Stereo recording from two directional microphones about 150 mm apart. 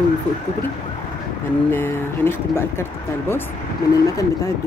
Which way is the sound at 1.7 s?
15° left (ahead or behind).